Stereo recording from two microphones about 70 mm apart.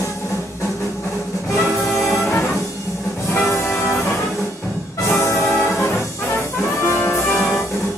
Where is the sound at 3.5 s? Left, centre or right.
Left.